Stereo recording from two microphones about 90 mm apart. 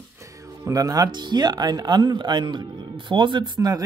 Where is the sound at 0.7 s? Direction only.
40° right (ahead or behind).